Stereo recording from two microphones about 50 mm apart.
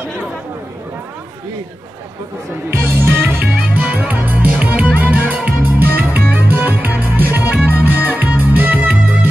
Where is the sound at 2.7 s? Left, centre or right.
Right.